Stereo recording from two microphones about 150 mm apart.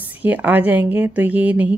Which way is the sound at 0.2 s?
10° right (ahead or behind).